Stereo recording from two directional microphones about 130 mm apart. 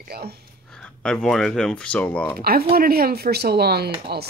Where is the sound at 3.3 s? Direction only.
85° right.